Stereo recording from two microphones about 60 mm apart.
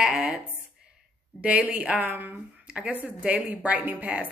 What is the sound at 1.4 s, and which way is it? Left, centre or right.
Speech, right.